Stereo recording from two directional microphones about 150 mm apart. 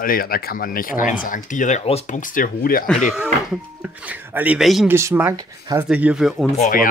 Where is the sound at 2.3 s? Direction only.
70° left (ahead or behind).